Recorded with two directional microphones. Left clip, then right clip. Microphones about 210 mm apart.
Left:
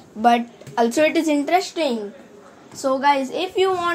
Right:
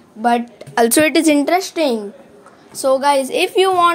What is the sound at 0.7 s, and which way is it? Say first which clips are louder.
A woman's voice: right 5 dB; 55° right (ahead or behind).